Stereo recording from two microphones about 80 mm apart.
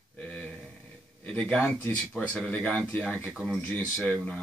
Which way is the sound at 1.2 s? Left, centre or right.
Centre.